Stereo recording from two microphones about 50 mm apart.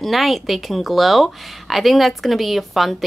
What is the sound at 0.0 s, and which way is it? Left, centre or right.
A woman's voice, centre.